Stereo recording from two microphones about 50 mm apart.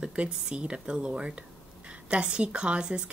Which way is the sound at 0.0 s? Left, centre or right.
Right.